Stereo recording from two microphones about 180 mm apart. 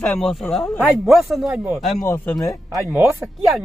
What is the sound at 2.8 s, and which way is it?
Speech, 15° right (ahead or behind).